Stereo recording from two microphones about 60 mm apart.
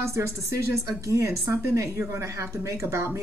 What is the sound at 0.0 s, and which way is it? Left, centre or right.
A woman's voice, right.